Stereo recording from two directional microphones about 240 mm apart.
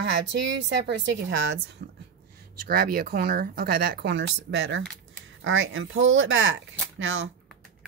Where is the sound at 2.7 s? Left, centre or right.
Right.